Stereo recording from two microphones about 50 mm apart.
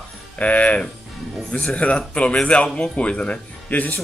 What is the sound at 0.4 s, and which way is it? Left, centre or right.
Speech, left.